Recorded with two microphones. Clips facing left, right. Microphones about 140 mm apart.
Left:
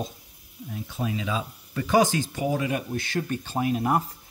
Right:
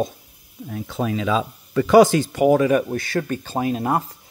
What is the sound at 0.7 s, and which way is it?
Speech, 80° right.